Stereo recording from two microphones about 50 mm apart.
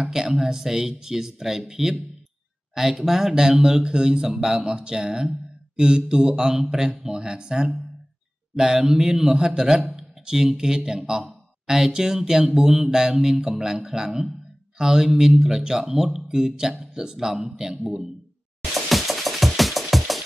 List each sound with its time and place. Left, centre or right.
0.1 s speech: centre
9.3 s speech: centre
18.9 s music: centre